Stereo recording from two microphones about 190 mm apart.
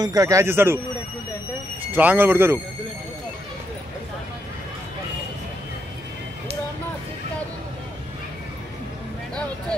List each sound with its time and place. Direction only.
0.0 s a man's voice: 20° right (ahead or behind)
1.9 s a man's voice: 10° right (ahead or behind)